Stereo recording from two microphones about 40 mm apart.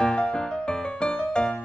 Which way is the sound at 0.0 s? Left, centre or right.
Left.